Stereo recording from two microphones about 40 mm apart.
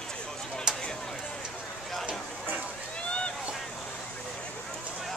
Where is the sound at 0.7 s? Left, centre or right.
Centre.